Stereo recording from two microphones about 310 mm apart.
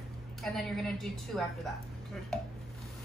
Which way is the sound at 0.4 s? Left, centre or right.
Centre.